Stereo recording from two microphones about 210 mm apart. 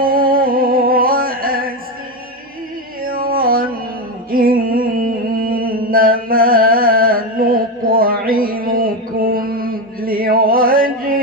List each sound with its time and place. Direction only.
0.0 s music: 45° right (ahead or behind)
3.0 s yodeling: 45° right (ahead or behind)
4.3 s music: 45° right (ahead or behind)